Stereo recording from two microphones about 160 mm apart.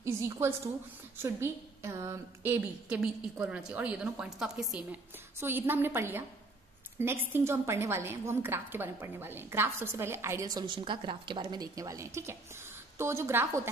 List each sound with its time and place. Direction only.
0.0 s a woman's voice: 15° right (ahead or behind)
2.6 s a woman's voice: 5° right (ahead or behind)
5.4 s a woman's voice: 15° right (ahead or behind)